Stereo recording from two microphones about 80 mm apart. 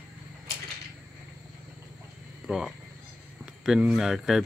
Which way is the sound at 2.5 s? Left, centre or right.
Centre.